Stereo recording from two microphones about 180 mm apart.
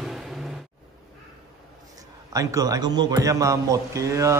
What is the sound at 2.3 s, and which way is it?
A man's voice, 20° right (ahead or behind).